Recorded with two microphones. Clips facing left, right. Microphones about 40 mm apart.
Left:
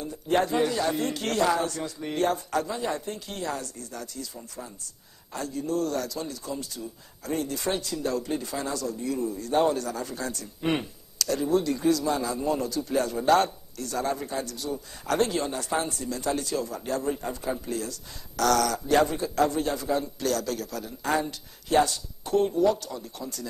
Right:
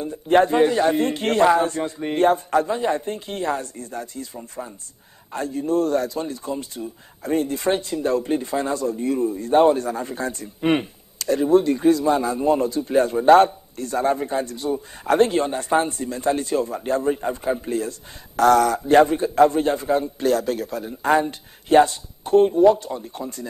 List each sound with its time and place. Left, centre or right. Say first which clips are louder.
0.0 s speech: right 8 dB; right